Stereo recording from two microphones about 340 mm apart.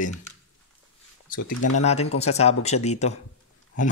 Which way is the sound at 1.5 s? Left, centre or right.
Left.